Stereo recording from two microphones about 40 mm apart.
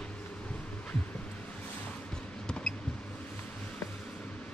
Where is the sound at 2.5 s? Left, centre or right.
Left.